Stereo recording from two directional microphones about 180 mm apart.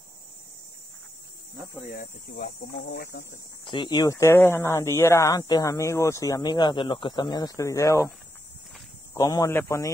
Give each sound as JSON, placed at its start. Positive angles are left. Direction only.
{"t": 1.9, "sound": "speech", "side_deg": 60}
{"t": 3.6, "sound": "speech", "side_deg": 25}
{"t": 9.1, "sound": "speech", "side_deg": 20}